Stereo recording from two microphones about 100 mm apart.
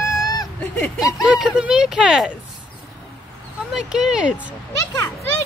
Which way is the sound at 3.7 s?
5° right (ahead or behind).